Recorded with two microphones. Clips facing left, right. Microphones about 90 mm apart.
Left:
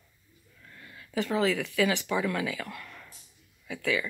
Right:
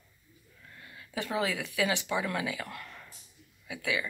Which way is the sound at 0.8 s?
20° right (ahead or behind).